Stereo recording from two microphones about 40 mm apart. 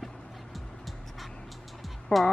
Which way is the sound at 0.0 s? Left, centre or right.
Centre.